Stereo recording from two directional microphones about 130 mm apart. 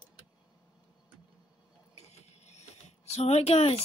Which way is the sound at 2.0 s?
55° left (ahead or behind).